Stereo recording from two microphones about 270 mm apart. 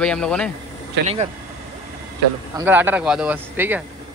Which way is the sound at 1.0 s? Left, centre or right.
Right.